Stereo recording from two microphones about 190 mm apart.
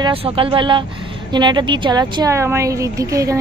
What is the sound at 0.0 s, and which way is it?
Speech, 30° right (ahead or behind).